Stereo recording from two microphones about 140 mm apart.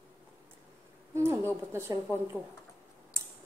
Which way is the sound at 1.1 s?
15° right (ahead or behind).